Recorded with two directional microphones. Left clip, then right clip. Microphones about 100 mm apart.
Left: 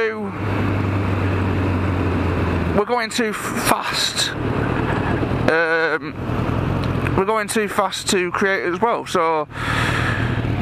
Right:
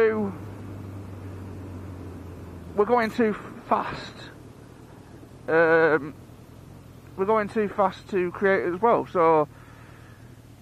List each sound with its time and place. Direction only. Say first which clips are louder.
2.9 s speech: left 2 dB; 15° left (ahead or behind)
5.4 s speech: left 1 dB; 15° left (ahead or behind)
7.2 s speech: left 4 dB; 15° left (ahead or behind)